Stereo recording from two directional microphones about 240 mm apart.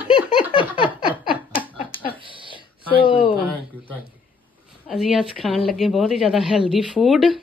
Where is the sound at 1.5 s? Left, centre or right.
Left.